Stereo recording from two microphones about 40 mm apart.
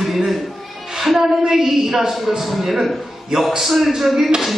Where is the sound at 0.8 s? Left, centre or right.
Centre.